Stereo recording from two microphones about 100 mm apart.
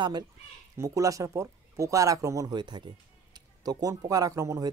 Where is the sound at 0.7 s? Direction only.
30° right (ahead or behind).